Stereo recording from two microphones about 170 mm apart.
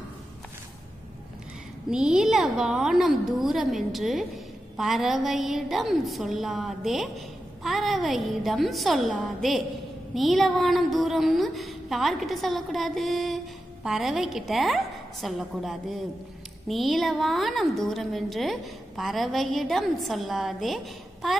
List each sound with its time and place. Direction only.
1.9 s a woman's voice: 5° right (ahead or behind)